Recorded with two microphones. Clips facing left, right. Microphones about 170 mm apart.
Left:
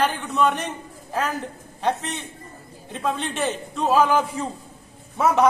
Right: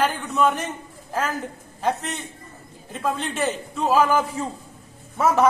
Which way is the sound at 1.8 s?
Centre (ahead or behind).